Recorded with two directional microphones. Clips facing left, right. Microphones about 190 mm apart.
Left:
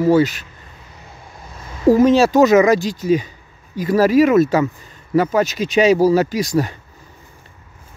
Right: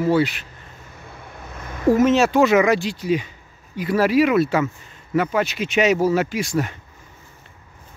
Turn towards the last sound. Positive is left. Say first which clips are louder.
# left 4 dB
turn(degrees=35)  # may be behind; listen again after turning